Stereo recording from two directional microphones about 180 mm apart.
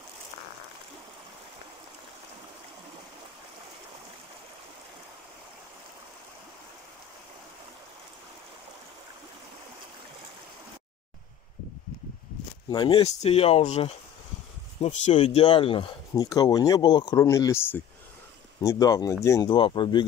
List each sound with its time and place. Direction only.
12.6 s speech: 25° left (ahead or behind)
19.5 s speech: 25° left (ahead or behind)